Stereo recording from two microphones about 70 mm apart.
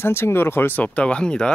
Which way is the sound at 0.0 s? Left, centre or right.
Left.